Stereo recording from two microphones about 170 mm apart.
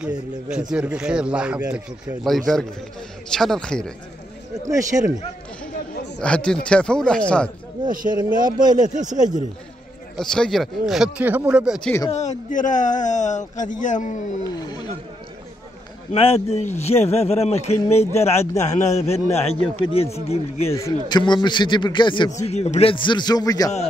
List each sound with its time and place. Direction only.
0.0 s speech: 5° right (ahead or behind)
4.6 s speech: 20° right (ahead or behind)
6.1 s speech: 5° left (ahead or behind)
7.9 s speech: 55° right (ahead or behind)
8.5 s speech: 25° right (ahead or behind)
8.7 s speech: 45° right (ahead or behind)
10.1 s speech: 5° left (ahead or behind)
12.1 s speech: 45° left (ahead or behind)
14.4 s a man's voice: 25° left (ahead or behind)
16.1 s a man's voice: 35° left (ahead or behind)
20.7 s a man's voice: 20° left (ahead or behind)